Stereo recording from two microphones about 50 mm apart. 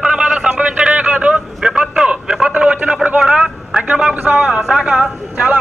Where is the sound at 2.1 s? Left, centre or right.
Right.